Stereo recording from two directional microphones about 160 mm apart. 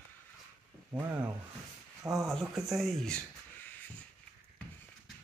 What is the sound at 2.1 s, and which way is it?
Speech, centre (ahead or behind).